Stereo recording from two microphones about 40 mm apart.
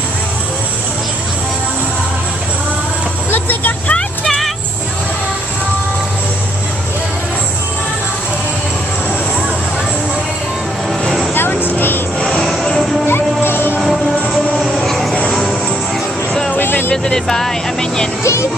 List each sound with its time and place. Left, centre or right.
3.3 s vehicle: left
11.3 s a sound: left
13.0 s music: left
14.9 s vehicle: centre
16.5 s music: left
16.9 s music: centre